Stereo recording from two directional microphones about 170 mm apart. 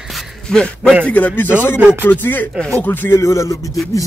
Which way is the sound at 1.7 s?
5° right (ahead or behind).